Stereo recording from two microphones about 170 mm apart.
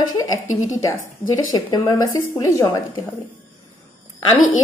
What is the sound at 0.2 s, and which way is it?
A woman's voice, 20° left (ahead or behind).